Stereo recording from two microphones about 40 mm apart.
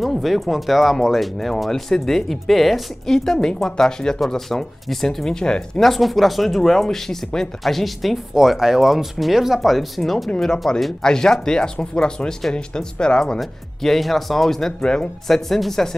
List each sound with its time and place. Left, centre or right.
0.0 s speech: centre
5.8 s speech: centre
10.4 s speech: centre
13.4 s speech: centre